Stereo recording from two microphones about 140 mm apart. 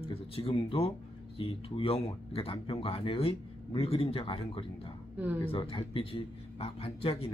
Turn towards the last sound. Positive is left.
turn(degrees=45)  # may be behind; listen again after turning